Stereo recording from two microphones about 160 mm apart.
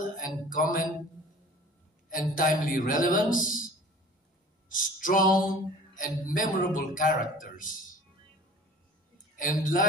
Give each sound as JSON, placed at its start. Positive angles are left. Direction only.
{"t": 0.5, "sound": "speech", "side_deg": 55}
{"t": 2.0, "sound": "speech", "side_deg": 60}
{"t": 4.6, "sound": "speech", "side_deg": 55}
{"t": 9.4, "sound": "speech", "side_deg": 55}